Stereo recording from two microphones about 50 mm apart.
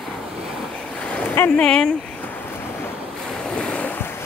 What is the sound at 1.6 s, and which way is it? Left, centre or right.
Speech, centre.